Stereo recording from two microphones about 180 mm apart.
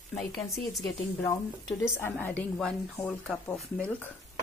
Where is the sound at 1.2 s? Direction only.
15° left (ahead or behind).